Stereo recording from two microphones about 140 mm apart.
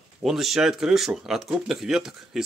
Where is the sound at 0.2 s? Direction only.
Centre (ahead or behind).